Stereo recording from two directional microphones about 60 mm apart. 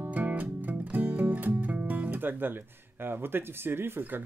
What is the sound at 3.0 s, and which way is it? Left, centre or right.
Speech, right.